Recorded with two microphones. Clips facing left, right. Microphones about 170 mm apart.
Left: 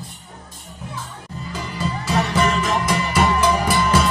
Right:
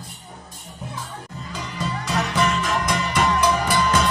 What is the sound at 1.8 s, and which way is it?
Music, 5° left (ahead or behind).